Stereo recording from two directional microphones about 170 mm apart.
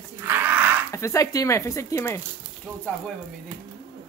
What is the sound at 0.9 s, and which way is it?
Speech, 15° left (ahead or behind).